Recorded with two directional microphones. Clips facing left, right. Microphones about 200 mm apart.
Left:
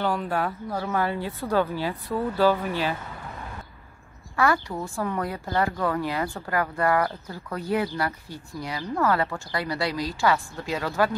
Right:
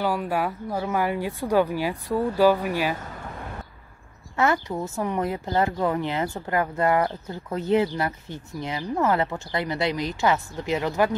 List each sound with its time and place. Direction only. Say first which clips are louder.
0.0 s speech: right 1 dB; 10° right (ahead or behind)
4.4 s a woman's voice: right 1 dB; 20° right (ahead or behind)